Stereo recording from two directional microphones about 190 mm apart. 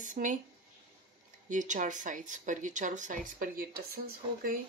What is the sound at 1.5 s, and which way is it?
Speech, 40° right (ahead or behind).